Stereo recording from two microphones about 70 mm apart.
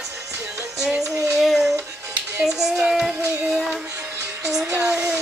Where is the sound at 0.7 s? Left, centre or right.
Centre.